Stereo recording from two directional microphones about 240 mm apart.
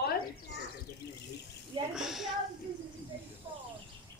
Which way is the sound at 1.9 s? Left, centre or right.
Centre.